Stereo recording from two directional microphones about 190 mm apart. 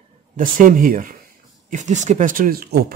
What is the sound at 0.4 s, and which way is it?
Speech, 45° right (ahead or behind).